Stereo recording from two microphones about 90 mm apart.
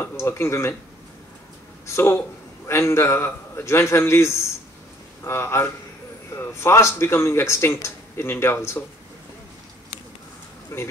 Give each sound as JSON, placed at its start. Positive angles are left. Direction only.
{"t": 0.0, "sound": "speech", "side_deg": 30}
{"t": 1.9, "sound": "a man's voice", "side_deg": 30}
{"t": 10.7, "sound": "speech", "side_deg": 30}